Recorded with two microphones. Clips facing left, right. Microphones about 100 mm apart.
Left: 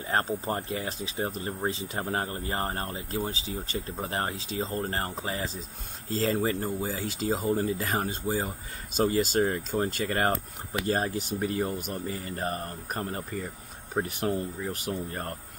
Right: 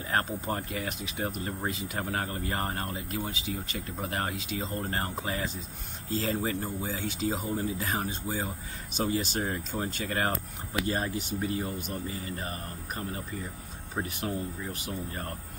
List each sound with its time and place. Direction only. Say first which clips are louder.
0.1 s speech: left 2 dB; 30° left (ahead or behind)
7.6 s speech: left 3 dB; 45° left (ahead or behind)